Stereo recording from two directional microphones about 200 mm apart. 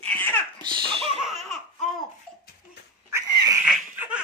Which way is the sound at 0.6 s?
25° right (ahead or behind).